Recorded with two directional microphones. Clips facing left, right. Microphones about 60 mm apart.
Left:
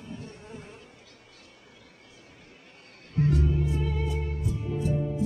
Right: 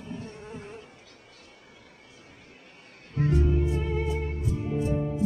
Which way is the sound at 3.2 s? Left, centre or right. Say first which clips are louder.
Right 1 dB; right.